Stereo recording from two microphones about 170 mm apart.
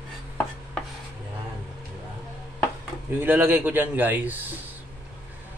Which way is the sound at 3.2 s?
10° right (ahead or behind).